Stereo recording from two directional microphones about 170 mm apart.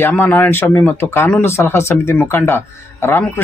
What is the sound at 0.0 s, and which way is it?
Speech, 10° left (ahead or behind).